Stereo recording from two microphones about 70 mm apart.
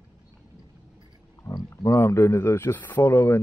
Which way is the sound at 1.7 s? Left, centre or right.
Left.